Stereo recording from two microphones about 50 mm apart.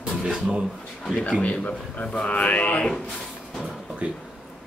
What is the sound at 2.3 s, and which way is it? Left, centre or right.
Speech, left.